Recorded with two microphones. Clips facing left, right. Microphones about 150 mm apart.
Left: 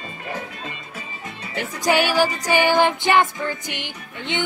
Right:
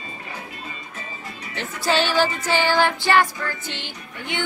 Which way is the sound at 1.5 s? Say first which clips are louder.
Left 2 dB; 15° left (ahead or behind).